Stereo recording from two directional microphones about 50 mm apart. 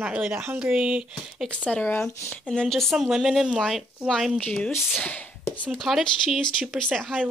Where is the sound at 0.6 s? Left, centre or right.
Centre.